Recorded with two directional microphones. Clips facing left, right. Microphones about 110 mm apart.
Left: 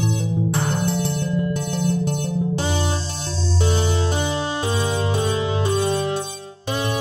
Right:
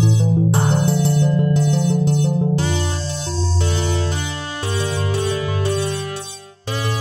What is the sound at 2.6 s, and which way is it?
Music, 20° left (ahead or behind).